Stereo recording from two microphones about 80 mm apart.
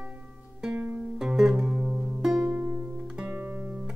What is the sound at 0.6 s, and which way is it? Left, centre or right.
Music, centre.